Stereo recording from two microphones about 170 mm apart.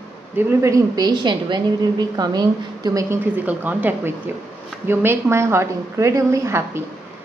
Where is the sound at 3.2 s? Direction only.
10° right (ahead or behind).